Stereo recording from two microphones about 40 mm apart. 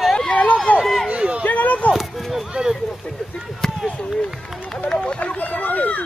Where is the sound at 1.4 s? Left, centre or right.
Left.